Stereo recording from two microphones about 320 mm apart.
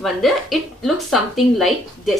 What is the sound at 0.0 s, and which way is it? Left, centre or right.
A woman's voice, centre.